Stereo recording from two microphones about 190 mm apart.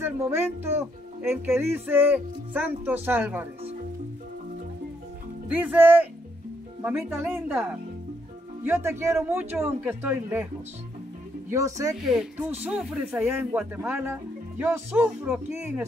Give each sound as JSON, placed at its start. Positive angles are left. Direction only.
{"t": 0.0, "sound": "speech", "side_deg": -15}
{"t": 5.5, "sound": "speech", "side_deg": -10}
{"t": 8.6, "sound": "speech", "side_deg": -10}
{"t": 11.5, "sound": "speech", "side_deg": -15}
{"t": 11.9, "sound": "speech", "side_deg": -5}